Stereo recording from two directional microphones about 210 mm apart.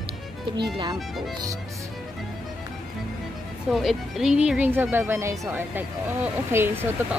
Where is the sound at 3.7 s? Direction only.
Centre (ahead or behind).